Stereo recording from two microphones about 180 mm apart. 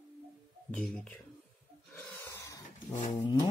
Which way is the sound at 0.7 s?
5° left (ahead or behind).